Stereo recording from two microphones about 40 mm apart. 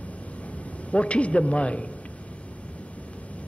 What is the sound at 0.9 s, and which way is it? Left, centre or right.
Speech, left.